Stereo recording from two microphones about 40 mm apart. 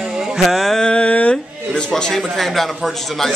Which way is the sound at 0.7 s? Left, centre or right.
Left.